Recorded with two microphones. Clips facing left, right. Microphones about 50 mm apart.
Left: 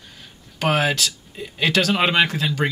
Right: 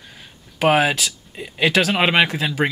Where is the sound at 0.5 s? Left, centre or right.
Centre.